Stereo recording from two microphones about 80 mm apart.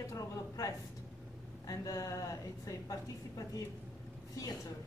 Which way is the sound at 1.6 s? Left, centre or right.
Left.